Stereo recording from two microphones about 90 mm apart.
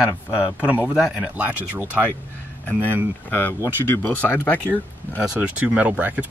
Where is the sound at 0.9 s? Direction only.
10° right (ahead or behind).